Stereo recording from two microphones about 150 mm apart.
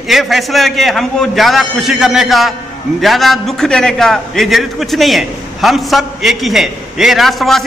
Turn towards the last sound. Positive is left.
turn(degrees=0)  # may be behind; listen again after turning